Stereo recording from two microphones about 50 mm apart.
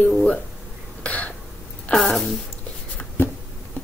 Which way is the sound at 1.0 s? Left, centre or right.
Left.